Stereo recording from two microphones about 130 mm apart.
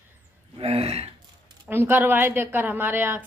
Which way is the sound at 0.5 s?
50° right (ahead or behind).